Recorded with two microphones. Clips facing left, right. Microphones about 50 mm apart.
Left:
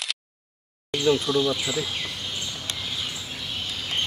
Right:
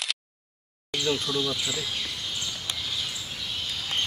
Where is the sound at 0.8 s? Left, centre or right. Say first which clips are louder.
Left 6 dB; centre.